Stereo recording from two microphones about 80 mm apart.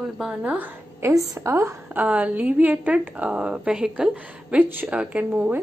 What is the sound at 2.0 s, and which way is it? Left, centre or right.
A woman's voice, centre.